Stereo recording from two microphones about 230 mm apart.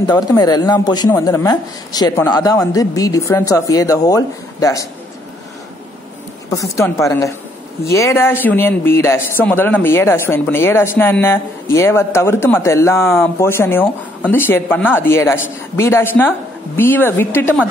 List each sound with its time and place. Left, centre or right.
0.0 s a man's voice: centre
6.5 s a man's voice: centre